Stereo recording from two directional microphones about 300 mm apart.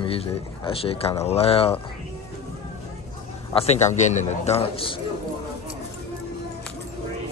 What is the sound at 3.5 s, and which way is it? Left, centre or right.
Speech, left.